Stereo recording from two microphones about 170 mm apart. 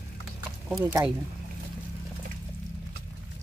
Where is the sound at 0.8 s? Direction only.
15° right (ahead or behind).